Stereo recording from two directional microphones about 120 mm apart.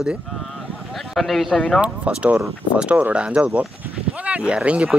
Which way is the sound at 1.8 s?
10° right (ahead or behind).